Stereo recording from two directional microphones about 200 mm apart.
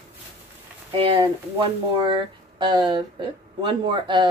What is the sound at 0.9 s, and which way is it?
Speech, 25° right (ahead or behind).